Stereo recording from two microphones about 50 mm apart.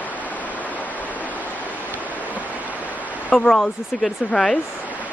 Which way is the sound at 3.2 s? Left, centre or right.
Left.